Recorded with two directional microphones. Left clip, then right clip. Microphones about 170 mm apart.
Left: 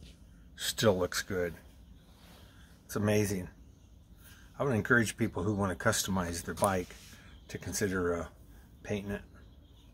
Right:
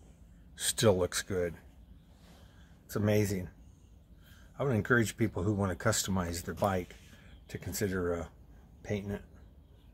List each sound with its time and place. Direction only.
0.6 s speech: 40° right (ahead or behind)
2.9 s speech: 30° right (ahead or behind)
4.6 s speech: 30° right (ahead or behind)